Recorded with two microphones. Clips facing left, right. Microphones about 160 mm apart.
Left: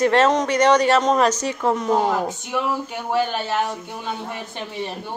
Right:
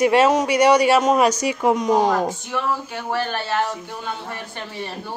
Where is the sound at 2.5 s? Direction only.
15° left (ahead or behind).